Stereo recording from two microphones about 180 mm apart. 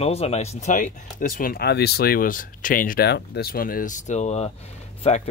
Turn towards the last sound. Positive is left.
turn(degrees=35)  # may be behind; listen again after turning